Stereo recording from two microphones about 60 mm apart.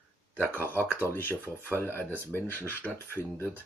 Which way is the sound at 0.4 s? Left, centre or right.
Left.